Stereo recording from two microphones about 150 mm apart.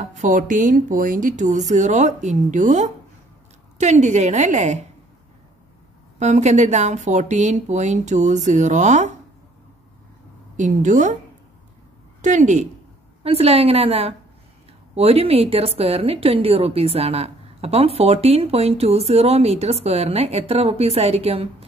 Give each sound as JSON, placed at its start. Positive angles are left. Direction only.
{"t": 0.0, "sound": "speech", "side_deg": -55}
{"t": 6.1, "sound": "speech", "side_deg": -50}
{"t": 10.5, "sound": "a woman's voice", "side_deg": -55}
{"t": 12.2, "sound": "a woman's voice", "side_deg": -55}
{"t": 13.2, "sound": "a woman's voice", "side_deg": -40}